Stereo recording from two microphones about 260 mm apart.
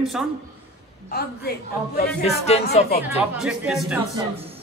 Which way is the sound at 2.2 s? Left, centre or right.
Left.